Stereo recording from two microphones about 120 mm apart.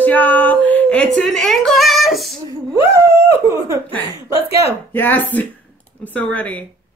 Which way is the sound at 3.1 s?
20° right (ahead or behind).